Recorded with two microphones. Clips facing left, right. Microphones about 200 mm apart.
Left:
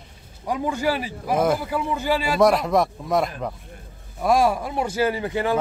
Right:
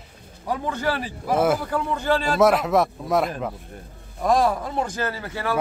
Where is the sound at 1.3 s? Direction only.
5° right (ahead or behind).